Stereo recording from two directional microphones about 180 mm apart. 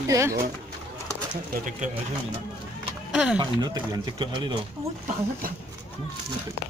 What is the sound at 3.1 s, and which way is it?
Speech, 5° right (ahead or behind).